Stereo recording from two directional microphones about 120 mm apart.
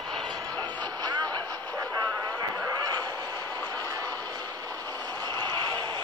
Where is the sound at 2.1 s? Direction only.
15° left (ahead or behind).